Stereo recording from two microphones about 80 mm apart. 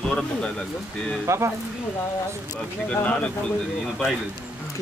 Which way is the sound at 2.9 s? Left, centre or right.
Centre.